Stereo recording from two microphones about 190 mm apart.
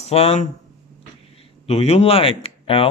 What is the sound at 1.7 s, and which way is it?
Speech, 35° left (ahead or behind).